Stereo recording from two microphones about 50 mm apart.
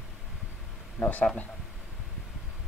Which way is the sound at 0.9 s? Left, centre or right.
Left.